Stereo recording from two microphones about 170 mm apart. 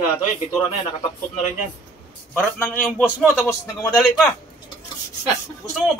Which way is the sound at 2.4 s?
10° left (ahead or behind).